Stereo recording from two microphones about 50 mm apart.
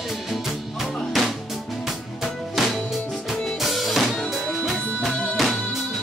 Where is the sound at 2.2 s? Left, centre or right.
Centre.